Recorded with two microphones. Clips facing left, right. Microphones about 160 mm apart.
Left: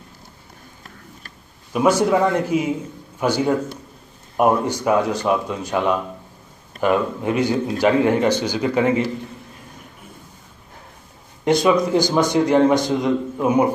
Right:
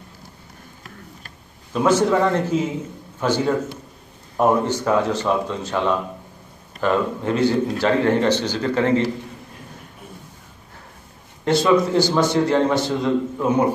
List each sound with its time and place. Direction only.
1.7 s a man's voice: 10° left (ahead or behind)
11.4 s a man's voice: 15° left (ahead or behind)